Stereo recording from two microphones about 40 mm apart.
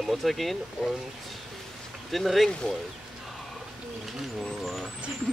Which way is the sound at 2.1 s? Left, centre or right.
Centre.